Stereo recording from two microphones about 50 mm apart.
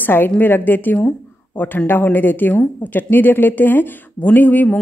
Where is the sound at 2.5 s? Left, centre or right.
Left.